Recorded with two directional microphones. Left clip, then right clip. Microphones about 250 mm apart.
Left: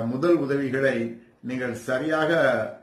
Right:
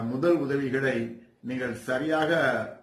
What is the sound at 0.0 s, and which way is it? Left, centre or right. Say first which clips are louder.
A man's voice: left 3 dB; centre.